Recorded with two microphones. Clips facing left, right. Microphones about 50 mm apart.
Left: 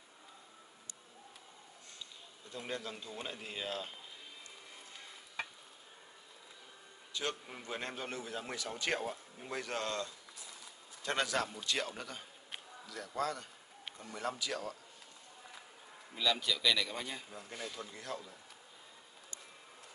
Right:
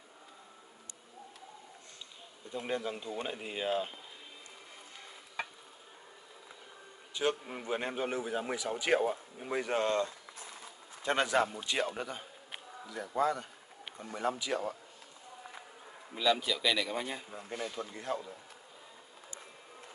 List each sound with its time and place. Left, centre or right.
2.5 s speech: centre
7.2 s a man's voice: centre
16.2 s a man's voice: centre